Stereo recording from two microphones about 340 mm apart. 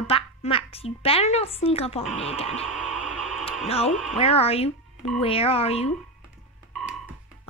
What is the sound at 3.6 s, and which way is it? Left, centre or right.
Speech, centre.